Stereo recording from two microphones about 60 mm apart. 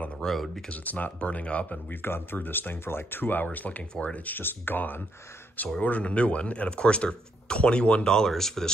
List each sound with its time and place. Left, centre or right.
0.2 s speech: centre
0.7 s speech: left
2.0 s speech: left
5.8 s speech: left; by 8.7 s centre